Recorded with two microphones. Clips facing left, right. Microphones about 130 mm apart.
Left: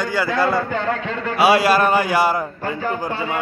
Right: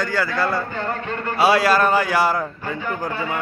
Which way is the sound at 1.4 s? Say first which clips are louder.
Left 1 dB; 5° left (ahead or behind).